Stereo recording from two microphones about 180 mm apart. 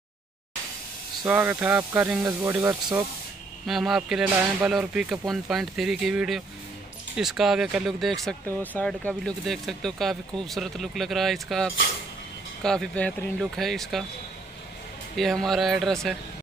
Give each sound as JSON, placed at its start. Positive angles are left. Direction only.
{"t": 1.2, "sound": "speech", "side_deg": -10}
{"t": 3.6, "sound": "speech", "side_deg": 0}
{"t": 15.1, "sound": "speech", "side_deg": 0}